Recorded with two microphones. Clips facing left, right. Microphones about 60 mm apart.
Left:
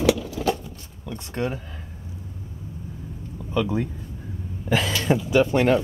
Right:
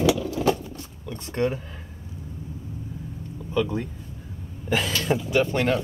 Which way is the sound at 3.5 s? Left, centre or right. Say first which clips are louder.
Left 1 dB; centre.